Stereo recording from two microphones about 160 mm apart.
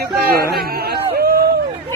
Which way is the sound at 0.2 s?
70° right (ahead or behind).